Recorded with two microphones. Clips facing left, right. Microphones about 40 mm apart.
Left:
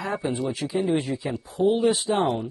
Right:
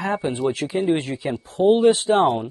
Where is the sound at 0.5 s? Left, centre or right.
Right.